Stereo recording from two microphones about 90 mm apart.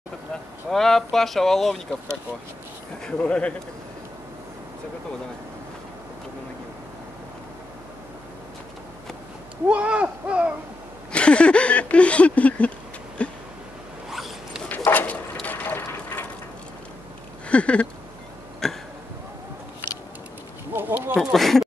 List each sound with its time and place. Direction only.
0.7 s speech: 5° left (ahead or behind)
3.1 s speech: 10° left (ahead or behind)
9.7 s speech: 15° right (ahead or behind)
11.1 s speech: 10° left (ahead or behind)
13.2 s a sound: 15° left (ahead or behind)
14.1 s zipper: 5° right (ahead or behind)
14.9 s bird: 20° left (ahead or behind)
15.4 s a sound: 20° left (ahead or behind)
17.5 s a sound: 15° left (ahead or behind)
18.6 s throat clearing: 5° left (ahead or behind)
20.7 s speech: 20° right (ahead or behind)
21.2 s speech: centre (ahead or behind)